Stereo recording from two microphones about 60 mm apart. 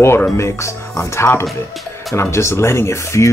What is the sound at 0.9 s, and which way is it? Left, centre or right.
Speech, left.